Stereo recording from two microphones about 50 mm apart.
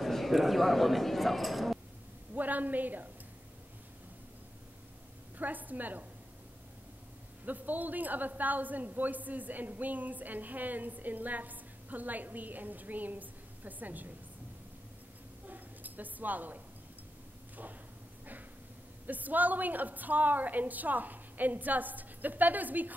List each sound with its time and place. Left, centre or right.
0.0 s speech: centre
2.3 s a woman's voice: right
5.4 s a man's voice: right
7.4 s a man's voice: right
15.4 s a sound: right
19.0 s a man's voice: right